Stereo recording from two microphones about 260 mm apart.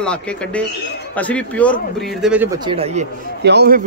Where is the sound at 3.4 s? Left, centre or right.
Right.